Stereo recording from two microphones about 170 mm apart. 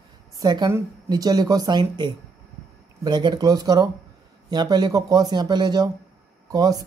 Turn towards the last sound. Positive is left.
turn(degrees=-20)  # may be behind; listen again after turning